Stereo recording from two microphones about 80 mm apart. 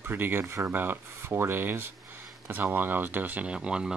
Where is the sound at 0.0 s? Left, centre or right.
Right.